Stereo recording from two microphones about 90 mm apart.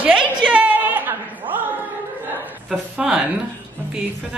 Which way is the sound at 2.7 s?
5° right (ahead or behind).